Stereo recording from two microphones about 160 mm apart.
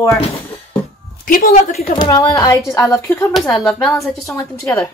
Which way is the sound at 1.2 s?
60° left (ahead or behind).